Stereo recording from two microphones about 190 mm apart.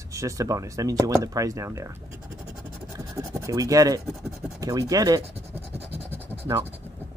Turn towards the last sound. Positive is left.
turn(degrees=-10)  # may be behind; listen again after turning